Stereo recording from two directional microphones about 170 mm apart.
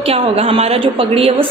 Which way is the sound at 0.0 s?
35° right (ahead or behind).